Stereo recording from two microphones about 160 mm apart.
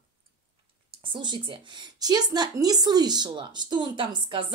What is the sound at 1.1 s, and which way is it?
Speech, 30° right (ahead or behind).